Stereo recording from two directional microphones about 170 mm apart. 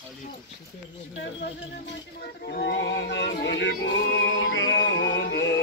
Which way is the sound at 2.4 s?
70° left (ahead or behind).